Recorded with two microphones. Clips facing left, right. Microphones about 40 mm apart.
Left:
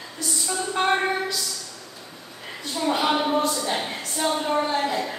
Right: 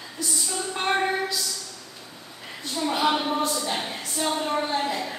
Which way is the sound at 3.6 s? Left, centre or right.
Centre.